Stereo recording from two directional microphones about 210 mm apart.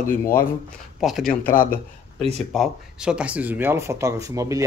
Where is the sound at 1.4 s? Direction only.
40° left (ahead or behind).